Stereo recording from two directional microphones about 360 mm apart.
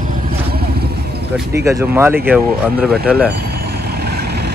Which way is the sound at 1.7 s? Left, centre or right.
Centre.